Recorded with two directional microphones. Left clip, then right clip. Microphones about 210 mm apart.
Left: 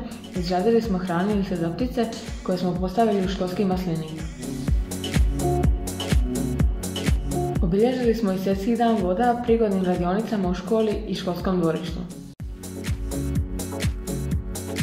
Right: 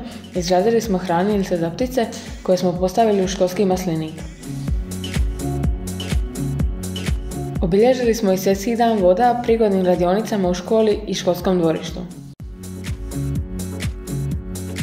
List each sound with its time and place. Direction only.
0.5 s a woman's voice: 25° right (ahead or behind)
4.6 s music: centre (ahead or behind)
7.7 s a woman's voice: 30° right (ahead or behind)
12.8 s music: centre (ahead or behind)